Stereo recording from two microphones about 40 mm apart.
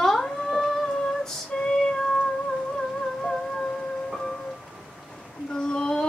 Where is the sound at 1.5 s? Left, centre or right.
Centre.